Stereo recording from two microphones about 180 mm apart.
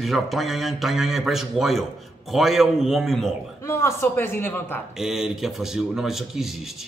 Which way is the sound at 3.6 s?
15° left (ahead or behind).